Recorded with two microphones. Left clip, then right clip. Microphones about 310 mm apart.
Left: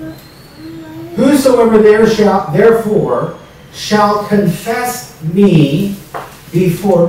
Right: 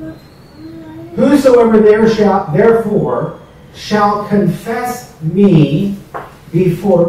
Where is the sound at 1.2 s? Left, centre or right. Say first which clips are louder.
Right 1 dB; centre.